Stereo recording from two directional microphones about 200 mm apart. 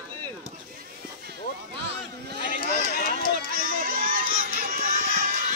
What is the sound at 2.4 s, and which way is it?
Run, 45° left (ahead or behind).